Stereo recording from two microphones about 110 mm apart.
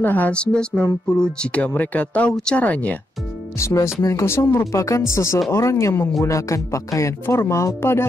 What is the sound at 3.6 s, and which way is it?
Speech, 25° left (ahead or behind).